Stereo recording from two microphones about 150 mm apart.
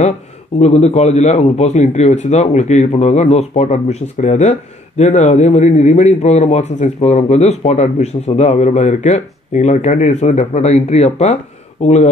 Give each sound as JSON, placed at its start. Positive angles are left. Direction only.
{"t": 0.6, "sound": "a man's voice", "side_deg": 45}